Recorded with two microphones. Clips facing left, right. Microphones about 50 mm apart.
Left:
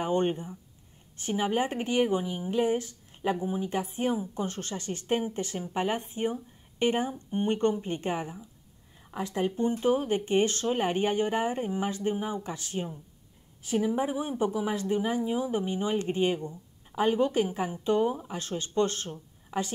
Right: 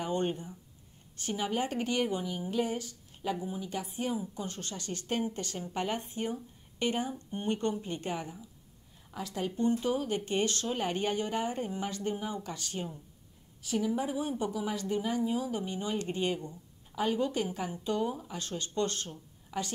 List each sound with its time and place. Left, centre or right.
0.0 s speech: left